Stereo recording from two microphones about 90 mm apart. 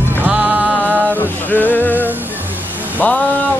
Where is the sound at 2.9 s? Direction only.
20° left (ahead or behind).